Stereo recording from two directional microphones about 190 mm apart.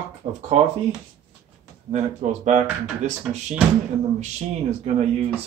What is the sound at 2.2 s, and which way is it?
Speech, 35° right (ahead or behind).